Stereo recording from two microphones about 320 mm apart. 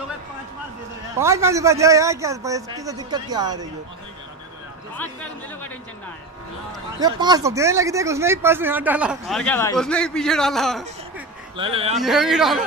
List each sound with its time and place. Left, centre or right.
1.1 s a man's voice: centre
4.9 s speech: centre
7.0 s speech: centre
11.5 s a man's voice: centre
12.0 s speech: centre